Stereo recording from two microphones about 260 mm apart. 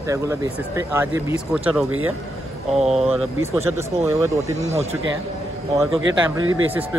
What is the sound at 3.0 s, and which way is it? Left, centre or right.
Speech, centre.